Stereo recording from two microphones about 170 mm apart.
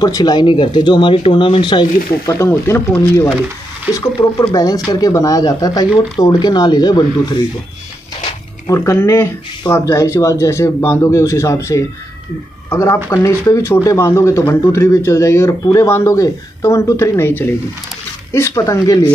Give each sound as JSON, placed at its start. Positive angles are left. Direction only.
{"t": 0.0, "sound": "speech", "side_deg": 25}
{"t": 8.6, "sound": "speech", "side_deg": 15}